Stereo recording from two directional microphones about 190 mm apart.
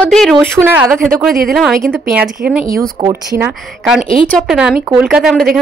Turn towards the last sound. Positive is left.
turn(degrees=-5)  # may be behind; listen again after turning